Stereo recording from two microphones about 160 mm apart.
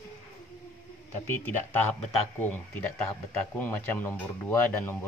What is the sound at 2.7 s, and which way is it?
Speech, 10° left (ahead or behind).